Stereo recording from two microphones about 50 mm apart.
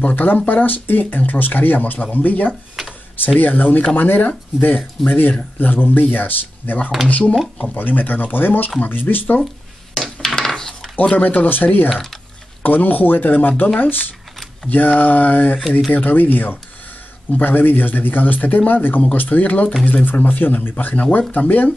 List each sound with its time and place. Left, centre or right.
0.1 s speech: left
2.8 s tick-tock: centre
3.3 s speech: left
9.9 s a sound: centre
11.2 s speech: left
11.9 s speech: centre
12.6 s speech: left